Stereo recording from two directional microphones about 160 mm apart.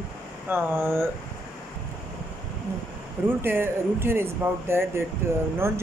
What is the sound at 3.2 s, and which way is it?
Speech, 15° right (ahead or behind).